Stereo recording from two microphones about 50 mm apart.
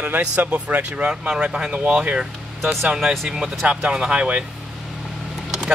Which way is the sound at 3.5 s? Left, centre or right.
Right.